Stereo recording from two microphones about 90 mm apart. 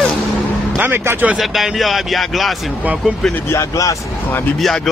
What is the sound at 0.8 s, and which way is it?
Speech, 20° right (ahead or behind).